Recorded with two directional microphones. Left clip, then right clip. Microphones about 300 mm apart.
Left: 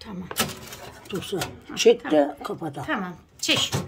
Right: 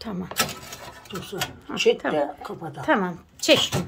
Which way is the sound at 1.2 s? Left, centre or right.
Left.